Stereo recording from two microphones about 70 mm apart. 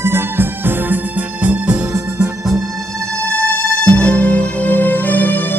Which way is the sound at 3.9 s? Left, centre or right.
Centre.